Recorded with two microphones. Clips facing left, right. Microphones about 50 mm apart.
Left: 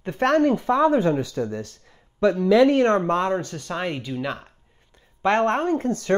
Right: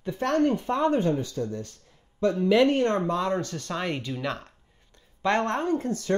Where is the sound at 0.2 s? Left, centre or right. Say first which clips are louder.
Left 7 dB; left.